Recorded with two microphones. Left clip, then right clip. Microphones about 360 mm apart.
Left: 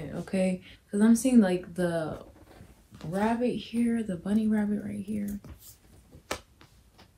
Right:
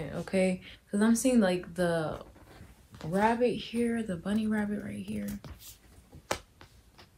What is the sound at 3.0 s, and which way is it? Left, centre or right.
Speech, right.